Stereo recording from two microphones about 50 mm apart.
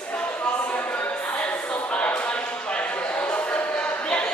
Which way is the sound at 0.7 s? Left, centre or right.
Left.